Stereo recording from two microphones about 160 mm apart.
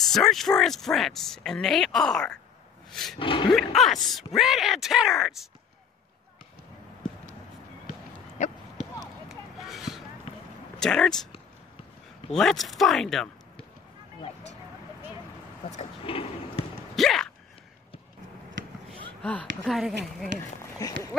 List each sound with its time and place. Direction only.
0.1 s speech: centre (ahead or behind)
2.9 s roar: centre (ahead or behind)
3.2 s speech: 30° left (ahead or behind)
3.5 s speech: centre (ahead or behind)
8.4 s a sound: 45° left (ahead or behind)
9.3 s clip-clop: centre (ahead or behind)
10.8 s speech: 5° left (ahead or behind)
12.3 s speech: centre (ahead or behind)
15.7 s speech: 40° left (ahead or behind)
16.9 s a sound: centre (ahead or behind)
19.2 s speech: 5° left (ahead or behind)
20.8 s speech: 25° left (ahead or behind)